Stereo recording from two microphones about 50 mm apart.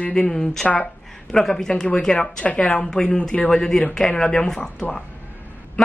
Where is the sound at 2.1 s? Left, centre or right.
Left.